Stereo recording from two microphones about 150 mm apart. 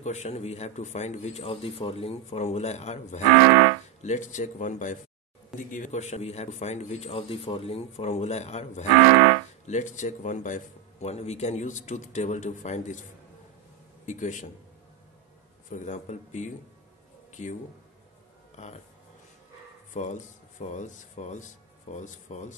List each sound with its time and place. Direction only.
0.0 s a man's voice: 50° left (ahead or behind)
9.0 s music: 90° right
9.7 s a man's voice: 55° left (ahead or behind)
14.0 s speech: 55° left (ahead or behind)
15.7 s a man's voice: 55° left (ahead or behind)
17.3 s a sound: 55° left (ahead or behind)
19.9 s speech: 55° left (ahead or behind)